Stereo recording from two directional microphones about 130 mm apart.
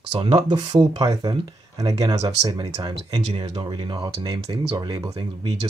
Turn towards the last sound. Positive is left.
turn(degrees=-30)  # may be behind; listen again after turning